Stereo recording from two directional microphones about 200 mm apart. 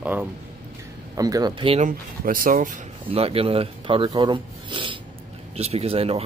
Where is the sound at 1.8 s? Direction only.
45° right (ahead or behind).